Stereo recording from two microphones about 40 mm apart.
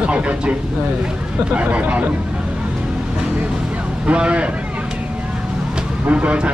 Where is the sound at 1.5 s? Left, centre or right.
Right.